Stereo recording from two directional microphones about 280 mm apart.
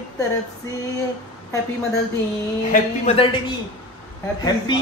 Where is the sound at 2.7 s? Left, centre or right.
Left.